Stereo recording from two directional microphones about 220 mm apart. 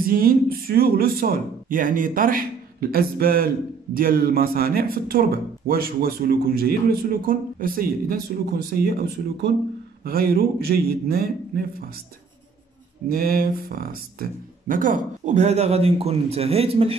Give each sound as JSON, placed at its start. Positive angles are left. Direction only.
{"t": 0.0, "sound": "speech", "side_deg": -40}
{"t": 10.0, "sound": "speech", "side_deg": -45}
{"t": 13.1, "sound": "speech", "side_deg": -45}